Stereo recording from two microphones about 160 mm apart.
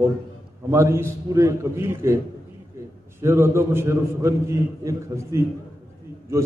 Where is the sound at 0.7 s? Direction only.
15° right (ahead or behind).